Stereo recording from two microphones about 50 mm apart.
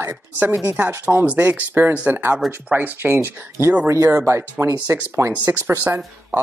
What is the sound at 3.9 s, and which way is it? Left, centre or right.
Speech, right.